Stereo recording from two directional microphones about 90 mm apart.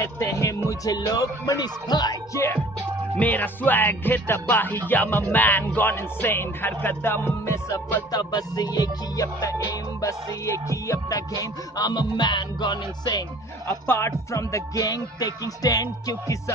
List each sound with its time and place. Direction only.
0.0 s music: 35° left (ahead or behind)
0.7 s speech: 40° left (ahead or behind)
2.3 s music: 30° left (ahead or behind)
3.2 s speech: 20° left (ahead or behind)
8.1 s music: 45° left (ahead or behind)
11.7 s speech: 50° left (ahead or behind)
13.7 s music: 30° left (ahead or behind)